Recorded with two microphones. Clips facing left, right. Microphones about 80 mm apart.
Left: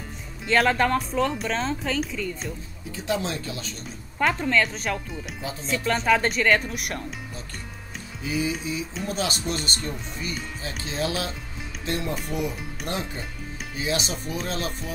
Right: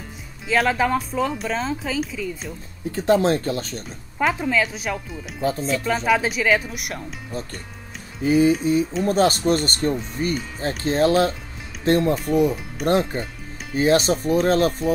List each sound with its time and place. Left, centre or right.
0.5 s speech: centre
2.9 s speech: right
4.2 s speech: centre
5.4 s speech: right
5.7 s speech: centre
8.2 s speech: right
12.8 s speech: centre
13.7 s speech: right